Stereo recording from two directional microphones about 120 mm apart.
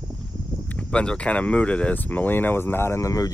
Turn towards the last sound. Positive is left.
turn(degrees=30)  # may be behind; listen again after turning